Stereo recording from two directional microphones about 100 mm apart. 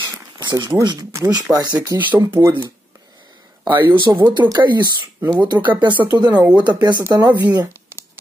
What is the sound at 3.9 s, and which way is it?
Speech, 55° right (ahead or behind).